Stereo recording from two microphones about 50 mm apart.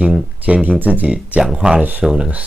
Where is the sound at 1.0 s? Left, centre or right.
Right.